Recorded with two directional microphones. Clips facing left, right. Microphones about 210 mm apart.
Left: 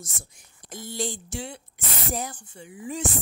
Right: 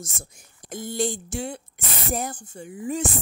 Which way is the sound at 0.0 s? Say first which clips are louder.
Right 4 dB; 50° right (ahead or behind).